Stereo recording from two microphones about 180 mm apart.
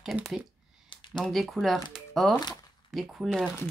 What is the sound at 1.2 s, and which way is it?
Speech, centre (ahead or behind).